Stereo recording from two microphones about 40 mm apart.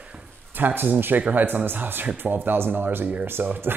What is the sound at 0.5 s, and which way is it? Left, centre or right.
Speech, right.